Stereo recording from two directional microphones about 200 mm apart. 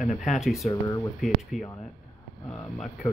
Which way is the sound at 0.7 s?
15° left (ahead or behind).